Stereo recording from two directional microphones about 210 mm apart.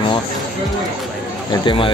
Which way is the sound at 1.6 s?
25° left (ahead or behind).